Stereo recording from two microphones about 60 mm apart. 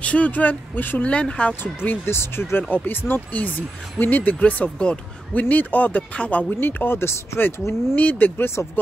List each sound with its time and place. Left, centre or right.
0.0 s speech: left
1.6 s speech: left
6.6 s speech: left
7.9 s speech: left